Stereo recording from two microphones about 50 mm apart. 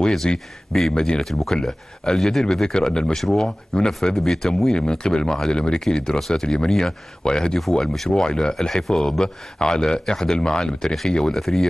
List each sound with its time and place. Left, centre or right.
0.3 s speech: centre